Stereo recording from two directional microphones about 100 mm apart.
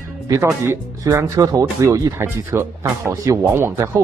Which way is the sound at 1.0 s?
30° right (ahead or behind).